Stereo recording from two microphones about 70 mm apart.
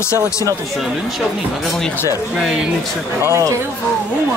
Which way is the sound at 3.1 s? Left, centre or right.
Right.